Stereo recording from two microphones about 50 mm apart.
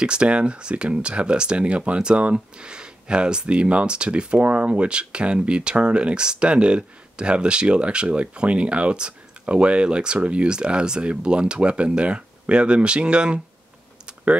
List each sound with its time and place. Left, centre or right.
0.0 s speech: centre
14.0 s typing: right